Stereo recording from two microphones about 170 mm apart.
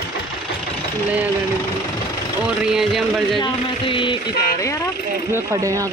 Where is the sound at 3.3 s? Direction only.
30° left (ahead or behind).